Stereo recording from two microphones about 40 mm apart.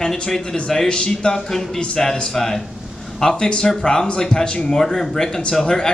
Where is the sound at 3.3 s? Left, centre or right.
Left.